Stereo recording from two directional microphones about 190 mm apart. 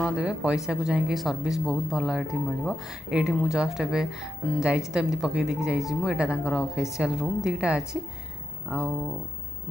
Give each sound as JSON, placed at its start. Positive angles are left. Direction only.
{"t": 0.0, "sound": "speech", "side_deg": -5}